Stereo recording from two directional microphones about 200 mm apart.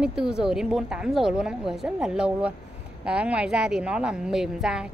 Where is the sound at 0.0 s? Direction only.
5° right (ahead or behind).